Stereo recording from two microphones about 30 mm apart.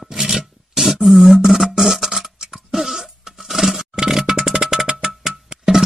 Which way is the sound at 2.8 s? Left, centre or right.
Centre.